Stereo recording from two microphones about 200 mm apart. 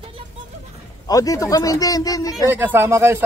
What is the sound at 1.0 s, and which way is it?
Speech, 15° left (ahead or behind).